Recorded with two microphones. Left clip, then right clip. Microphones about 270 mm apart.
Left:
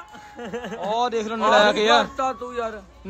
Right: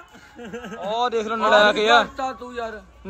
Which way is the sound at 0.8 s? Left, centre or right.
Centre.